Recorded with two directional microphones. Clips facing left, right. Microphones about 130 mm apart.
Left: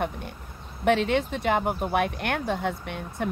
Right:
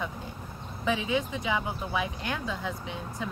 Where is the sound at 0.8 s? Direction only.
70° left (ahead or behind).